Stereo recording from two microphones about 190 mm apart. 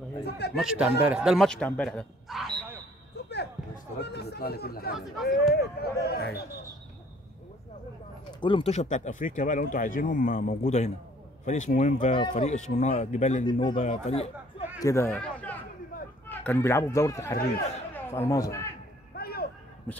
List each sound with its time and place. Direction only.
0.6 s speech: 5° right (ahead or behind)
4.0 s speech: 60° left (ahead or behind)
4.9 s speech: centre (ahead or behind)
5.5 s speech: 55° left (ahead or behind)
8.3 s speech: 25° left (ahead or behind); by 12.1 s 40° left (ahead or behind)
12.1 s speech: 25° left (ahead or behind)
13.5 s speech: 25° left (ahead or behind)
13.7 s speech: 35° left (ahead or behind)
14.8 s speech: 15° left (ahead or behind)
19.1 s a sound: 55° left (ahead or behind)